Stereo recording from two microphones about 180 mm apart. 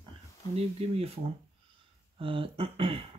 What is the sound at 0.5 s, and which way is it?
Speech, 35° right (ahead or behind).